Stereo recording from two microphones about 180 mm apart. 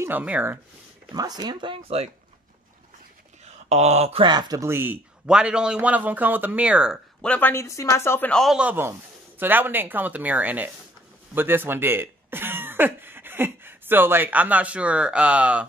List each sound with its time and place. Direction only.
0.0 s speech: 10° right (ahead or behind)
1.1 s speech: 20° right (ahead or behind)
3.4 s speech: 40° right (ahead or behind); by 15.6 s 5° right (ahead or behind)